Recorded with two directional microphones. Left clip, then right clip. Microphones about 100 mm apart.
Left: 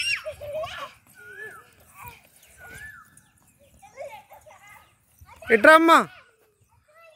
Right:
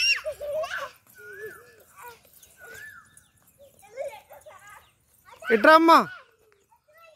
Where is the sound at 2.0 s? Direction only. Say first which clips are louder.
Left 1 dB; 25° right (ahead or behind).